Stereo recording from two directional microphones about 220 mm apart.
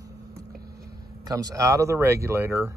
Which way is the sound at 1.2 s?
15° right (ahead or behind).